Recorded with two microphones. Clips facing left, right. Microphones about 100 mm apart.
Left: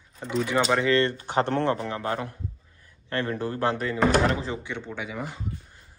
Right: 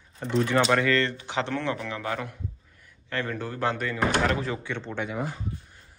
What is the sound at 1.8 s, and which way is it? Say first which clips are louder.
Speech: left 2 dB; 35° left (ahead or behind).